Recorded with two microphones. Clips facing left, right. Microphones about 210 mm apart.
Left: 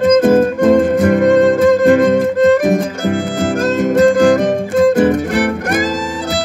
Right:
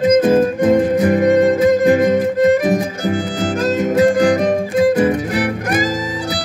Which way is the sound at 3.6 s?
70° left (ahead or behind).